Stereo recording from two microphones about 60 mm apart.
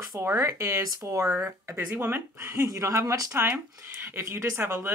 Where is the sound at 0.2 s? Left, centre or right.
Right.